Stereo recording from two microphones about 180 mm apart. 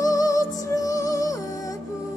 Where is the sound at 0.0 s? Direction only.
20° left (ahead or behind).